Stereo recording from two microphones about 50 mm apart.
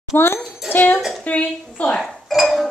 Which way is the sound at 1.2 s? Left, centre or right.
Left.